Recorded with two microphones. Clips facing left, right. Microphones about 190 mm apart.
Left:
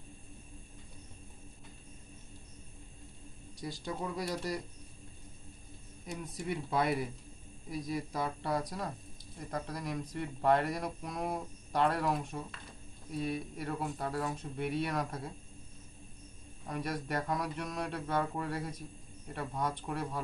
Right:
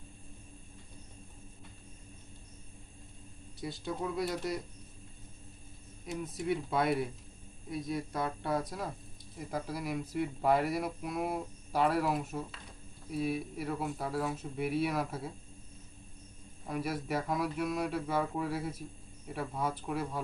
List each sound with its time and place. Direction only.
3.6 s mantra: centre (ahead or behind)
6.0 s mantra: centre (ahead or behind)
16.6 s mantra: 5° right (ahead or behind)